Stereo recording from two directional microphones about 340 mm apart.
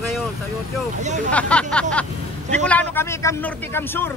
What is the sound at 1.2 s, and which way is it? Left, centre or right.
Speech, centre.